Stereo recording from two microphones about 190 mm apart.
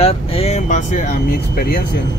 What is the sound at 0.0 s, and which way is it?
Speech, 35° left (ahead or behind).